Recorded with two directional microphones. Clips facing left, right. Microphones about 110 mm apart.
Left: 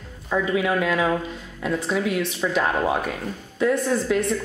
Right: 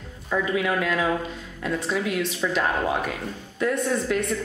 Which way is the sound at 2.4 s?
15° left (ahead or behind).